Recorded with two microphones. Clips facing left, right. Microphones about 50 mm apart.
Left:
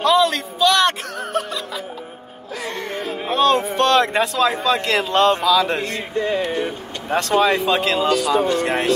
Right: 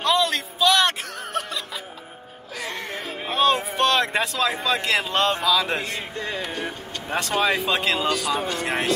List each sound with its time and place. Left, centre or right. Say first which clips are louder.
0.0 s music: left 5 dB; centre
2.6 s a sound: left 4 dB; centre
6.1 s speech: left 12 dB; centre
7.1 s speech: left 5 dB; centre